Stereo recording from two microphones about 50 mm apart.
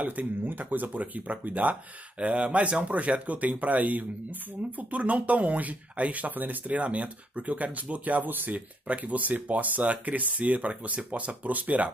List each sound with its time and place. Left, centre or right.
0.0 s speech: right